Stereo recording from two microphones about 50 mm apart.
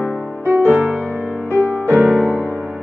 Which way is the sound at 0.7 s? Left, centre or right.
Right.